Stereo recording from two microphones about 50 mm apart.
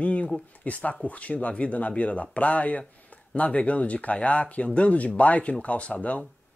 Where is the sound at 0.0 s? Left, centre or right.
Left.